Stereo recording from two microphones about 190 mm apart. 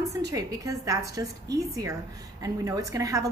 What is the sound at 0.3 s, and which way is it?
A woman's voice, 20° right (ahead or behind).